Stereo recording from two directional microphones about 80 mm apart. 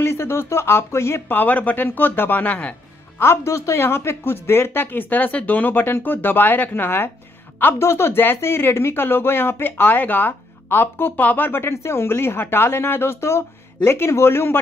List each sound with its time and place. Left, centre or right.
0.0 s speech: left
1.4 s a woman's voice: left
3.2 s a woman's voice: left